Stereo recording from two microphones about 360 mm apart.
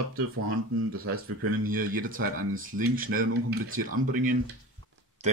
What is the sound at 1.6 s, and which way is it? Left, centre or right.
Speech, right.